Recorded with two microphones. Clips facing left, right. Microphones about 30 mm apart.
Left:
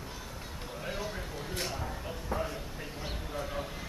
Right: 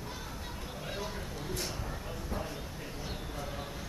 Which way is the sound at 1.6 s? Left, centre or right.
Centre.